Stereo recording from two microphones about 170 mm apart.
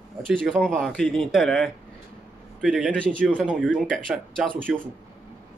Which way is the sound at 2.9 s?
5° left (ahead or behind).